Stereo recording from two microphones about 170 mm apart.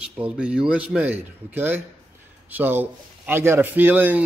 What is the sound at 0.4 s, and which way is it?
A man's voice, 5° right (ahead or behind).